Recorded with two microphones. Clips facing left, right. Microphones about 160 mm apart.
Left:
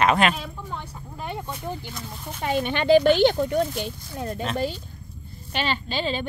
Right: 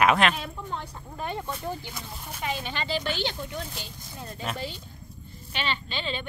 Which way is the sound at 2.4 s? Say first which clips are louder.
Left 9 dB; 60° left (ahead or behind).